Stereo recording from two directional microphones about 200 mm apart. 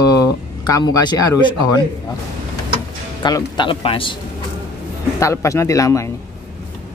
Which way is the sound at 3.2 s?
20° left (ahead or behind).